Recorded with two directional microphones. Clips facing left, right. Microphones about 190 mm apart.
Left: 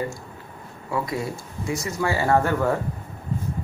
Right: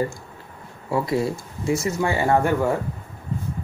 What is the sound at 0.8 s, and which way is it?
Speech, 30° right (ahead or behind).